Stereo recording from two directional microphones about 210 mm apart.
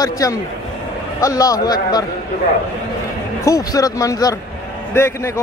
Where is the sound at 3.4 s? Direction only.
15° left (ahead or behind).